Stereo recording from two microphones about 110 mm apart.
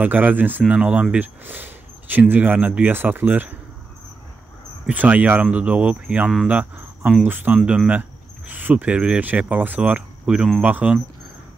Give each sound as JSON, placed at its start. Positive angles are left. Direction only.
{"t": 0.0, "sound": "speech", "side_deg": -15}
{"t": 4.8, "sound": "speech", "side_deg": -15}